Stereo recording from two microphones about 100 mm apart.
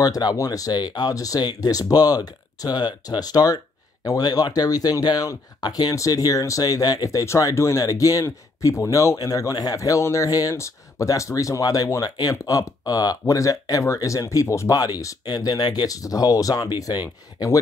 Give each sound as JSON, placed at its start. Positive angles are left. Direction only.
{"t": 0.0, "sound": "speech", "side_deg": 40}